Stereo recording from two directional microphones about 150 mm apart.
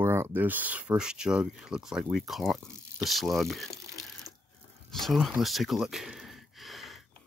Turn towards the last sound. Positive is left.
turn(degrees=0)  # may be behind; listen again after turning